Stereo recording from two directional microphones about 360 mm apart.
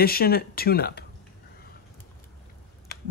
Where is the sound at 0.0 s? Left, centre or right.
Left.